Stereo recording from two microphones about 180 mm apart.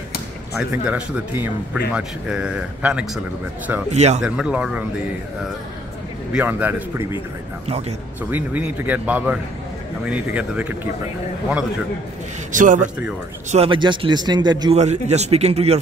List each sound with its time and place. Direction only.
0.8 s speech: 5° right (ahead or behind)
3.9 s a man's voice: 40° right (ahead or behind)
4.2 s speech: 5° right (ahead or behind)
6.3 s speech: 10° right (ahead or behind)
8.3 s speech: 10° right (ahead or behind)
12.5 s a man's voice: 45° right (ahead or behind)
13.5 s a man's voice: 30° right (ahead or behind)
14.8 s a man's voice: 40° right (ahead or behind)